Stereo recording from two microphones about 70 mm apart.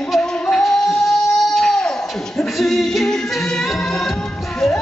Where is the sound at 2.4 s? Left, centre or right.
Centre.